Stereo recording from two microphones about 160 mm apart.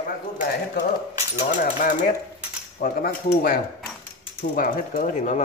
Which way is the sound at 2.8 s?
65° left (ahead or behind).